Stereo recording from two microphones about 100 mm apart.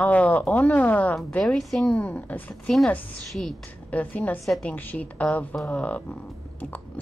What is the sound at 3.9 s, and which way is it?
A woman's voice, 15° left (ahead or behind).